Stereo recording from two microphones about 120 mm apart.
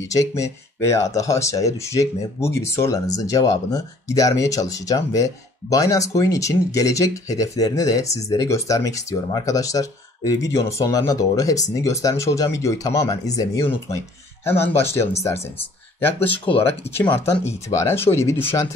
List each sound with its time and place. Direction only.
0.0 s speech: 25° left (ahead or behind)